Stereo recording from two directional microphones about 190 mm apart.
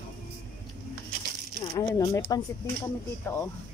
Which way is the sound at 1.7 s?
20° left (ahead or behind).